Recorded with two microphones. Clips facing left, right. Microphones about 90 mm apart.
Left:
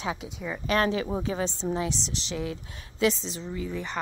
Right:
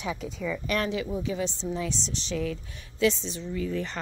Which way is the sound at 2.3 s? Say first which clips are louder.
Right 3 dB; 20° left (ahead or behind).